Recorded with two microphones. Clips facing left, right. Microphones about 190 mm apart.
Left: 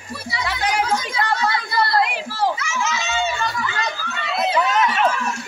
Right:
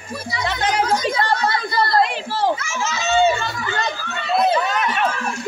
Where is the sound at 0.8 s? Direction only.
40° right (ahead or behind).